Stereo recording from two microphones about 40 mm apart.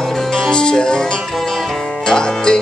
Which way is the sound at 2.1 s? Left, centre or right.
Centre.